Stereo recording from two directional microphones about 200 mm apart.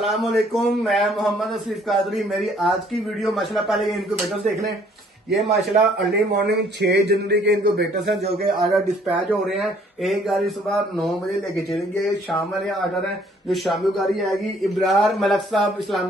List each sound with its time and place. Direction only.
0.0 s a man's voice: centre (ahead or behind)
6.1 s speech: 55° right (ahead or behind)
8.2 s a man's voice: centre (ahead or behind)
13.5 s a man's voice: centre (ahead or behind)